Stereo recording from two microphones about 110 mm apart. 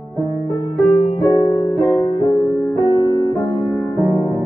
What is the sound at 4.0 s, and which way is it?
Music, 15° left (ahead or behind).